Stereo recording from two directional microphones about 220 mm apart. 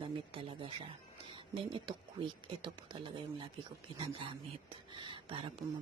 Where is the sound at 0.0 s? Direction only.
25° right (ahead or behind).